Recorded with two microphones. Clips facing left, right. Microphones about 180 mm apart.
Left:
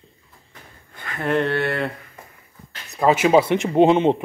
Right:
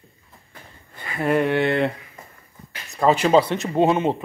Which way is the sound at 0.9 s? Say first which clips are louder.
Right 1 dB; 5° right (ahead or behind).